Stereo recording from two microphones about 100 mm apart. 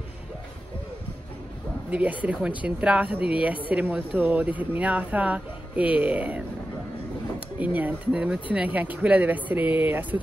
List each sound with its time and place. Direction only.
1.9 s speech: 15° right (ahead or behind)